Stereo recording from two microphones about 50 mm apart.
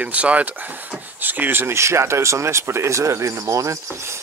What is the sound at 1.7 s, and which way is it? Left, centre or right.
Speech, right.